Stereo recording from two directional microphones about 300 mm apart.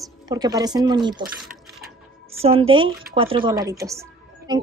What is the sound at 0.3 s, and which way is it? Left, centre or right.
Speech, centre.